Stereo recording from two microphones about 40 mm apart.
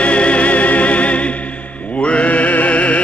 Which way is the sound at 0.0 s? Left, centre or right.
Left.